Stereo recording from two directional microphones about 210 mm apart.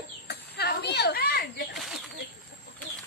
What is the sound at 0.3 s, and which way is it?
Children playing, 50° left (ahead or behind).